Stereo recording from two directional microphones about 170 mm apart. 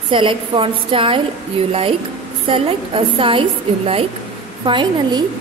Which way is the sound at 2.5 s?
30° right (ahead or behind).